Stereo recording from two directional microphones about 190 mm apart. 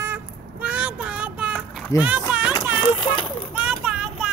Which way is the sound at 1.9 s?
15° left (ahead or behind).